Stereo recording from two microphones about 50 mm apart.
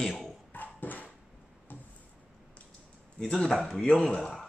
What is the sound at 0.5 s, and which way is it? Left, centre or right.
Dog, left.